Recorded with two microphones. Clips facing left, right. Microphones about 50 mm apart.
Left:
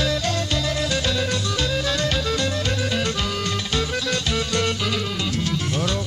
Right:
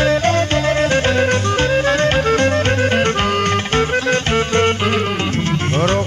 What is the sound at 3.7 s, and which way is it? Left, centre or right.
Music, right.